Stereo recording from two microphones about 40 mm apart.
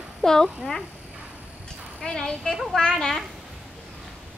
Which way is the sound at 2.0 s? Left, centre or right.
Centre.